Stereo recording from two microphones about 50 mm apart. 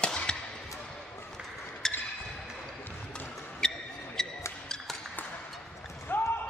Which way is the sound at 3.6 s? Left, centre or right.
Centre.